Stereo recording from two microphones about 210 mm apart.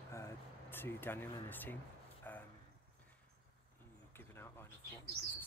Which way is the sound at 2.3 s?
10° left (ahead or behind).